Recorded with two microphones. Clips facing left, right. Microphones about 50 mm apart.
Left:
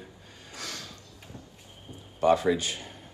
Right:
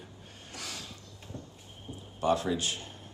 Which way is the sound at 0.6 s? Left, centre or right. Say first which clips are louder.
Left 3 dB; left.